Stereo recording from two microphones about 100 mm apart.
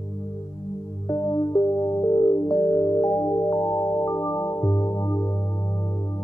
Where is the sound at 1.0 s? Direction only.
35° left (ahead or behind).